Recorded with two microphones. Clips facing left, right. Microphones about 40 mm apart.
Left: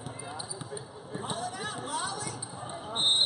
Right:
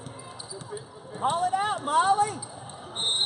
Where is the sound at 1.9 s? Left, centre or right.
Right.